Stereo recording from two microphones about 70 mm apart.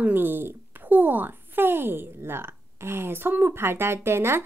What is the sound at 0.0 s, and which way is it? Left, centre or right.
Speech, right.